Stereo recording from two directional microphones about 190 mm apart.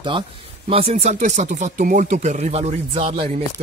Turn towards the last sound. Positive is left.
turn(degrees=-30)  # may be behind; listen again after turning